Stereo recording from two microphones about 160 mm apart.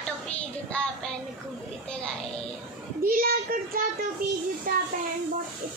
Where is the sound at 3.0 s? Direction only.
65° right (ahead or behind).